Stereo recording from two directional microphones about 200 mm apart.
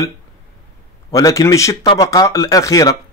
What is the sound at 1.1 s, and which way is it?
A man's voice, 15° left (ahead or behind).